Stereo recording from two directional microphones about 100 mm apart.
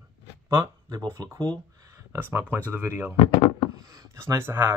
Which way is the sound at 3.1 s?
55° left (ahead or behind).